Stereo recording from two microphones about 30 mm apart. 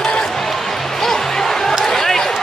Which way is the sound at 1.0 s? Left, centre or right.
Centre.